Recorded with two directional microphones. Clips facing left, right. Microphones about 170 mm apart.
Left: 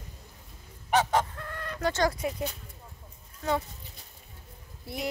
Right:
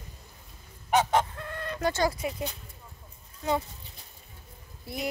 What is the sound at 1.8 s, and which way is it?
Goose, 10° right (ahead or behind).